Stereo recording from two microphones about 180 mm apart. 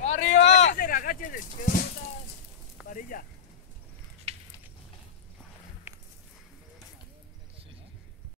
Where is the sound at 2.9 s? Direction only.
50° left (ahead or behind).